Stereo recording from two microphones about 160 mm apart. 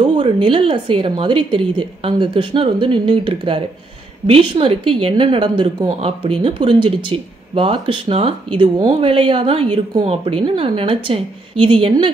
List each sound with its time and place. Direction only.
0.0 s speech: 30° right (ahead or behind)